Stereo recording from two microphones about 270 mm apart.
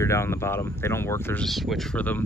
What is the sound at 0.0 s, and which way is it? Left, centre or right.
Speech, centre.